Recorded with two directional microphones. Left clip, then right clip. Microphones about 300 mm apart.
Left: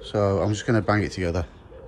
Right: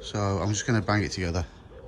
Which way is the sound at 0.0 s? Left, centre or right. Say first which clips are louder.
Left 7 dB; centre.